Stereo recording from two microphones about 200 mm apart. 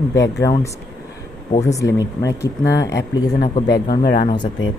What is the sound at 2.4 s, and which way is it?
Speech, 15° left (ahead or behind).